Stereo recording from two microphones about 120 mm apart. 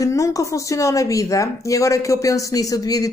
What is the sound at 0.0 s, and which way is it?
A woman's voice, 25° left (ahead or behind).